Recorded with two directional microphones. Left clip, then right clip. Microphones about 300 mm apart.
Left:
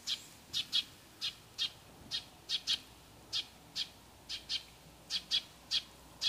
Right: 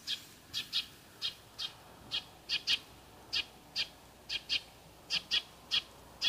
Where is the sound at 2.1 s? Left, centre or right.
Left.